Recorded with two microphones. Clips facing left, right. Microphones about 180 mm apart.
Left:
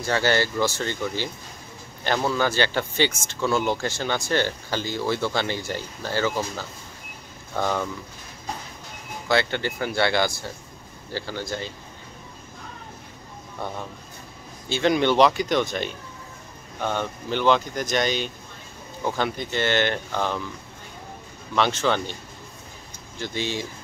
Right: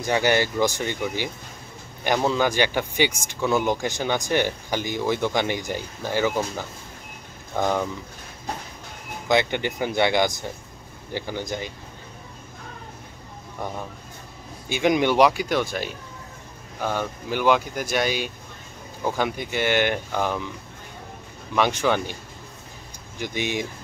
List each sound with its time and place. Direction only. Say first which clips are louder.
0.0 s speech: right 1 dB; 15° right (ahead or behind)
9.3 s speech: right 2 dB; 15° right (ahead or behind)
13.6 s speech: right 1 dB; 10° right (ahead or behind)
21.5 s speech: right 1 dB; 10° right (ahead or behind)
23.1 s speech: right 2 dB; 15° right (ahead or behind)